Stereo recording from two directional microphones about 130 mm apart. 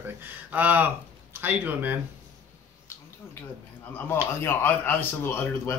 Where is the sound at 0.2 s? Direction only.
15° right (ahead or behind).